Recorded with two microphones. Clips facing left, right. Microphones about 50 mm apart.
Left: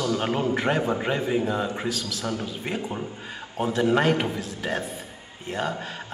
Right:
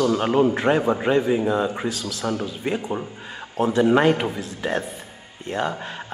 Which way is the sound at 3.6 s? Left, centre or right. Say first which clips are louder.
Right 4 dB; centre.